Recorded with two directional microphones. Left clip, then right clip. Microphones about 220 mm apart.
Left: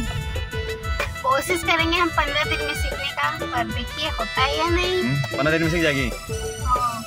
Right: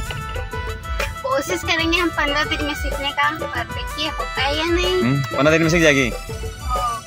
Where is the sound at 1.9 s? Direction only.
15° left (ahead or behind).